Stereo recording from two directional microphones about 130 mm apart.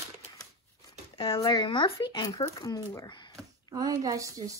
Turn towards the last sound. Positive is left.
turn(degrees=-25)  # may be behind; listen again after turning